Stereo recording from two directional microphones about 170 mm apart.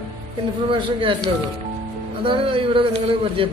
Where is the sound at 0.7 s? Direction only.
30° right (ahead or behind).